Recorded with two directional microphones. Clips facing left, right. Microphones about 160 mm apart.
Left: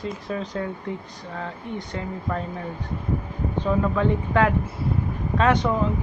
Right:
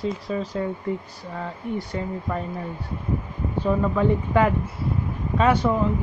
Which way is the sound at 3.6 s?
10° right (ahead or behind).